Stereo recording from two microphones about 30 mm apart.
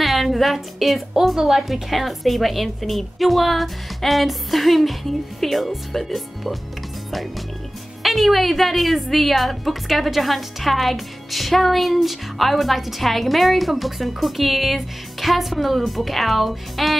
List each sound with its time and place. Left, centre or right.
0.0 s a woman's voice: centre
1.3 s speech: centre
1.6 s a woman's voice: centre
8.0 s a woman's voice: centre